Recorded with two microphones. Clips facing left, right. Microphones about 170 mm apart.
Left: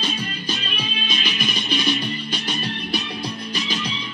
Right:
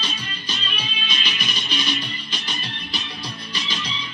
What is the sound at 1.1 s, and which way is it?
Music, 50° left (ahead or behind).